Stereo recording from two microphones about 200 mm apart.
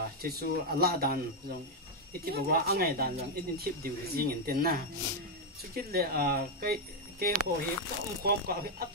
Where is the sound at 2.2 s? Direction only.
50° right (ahead or behind).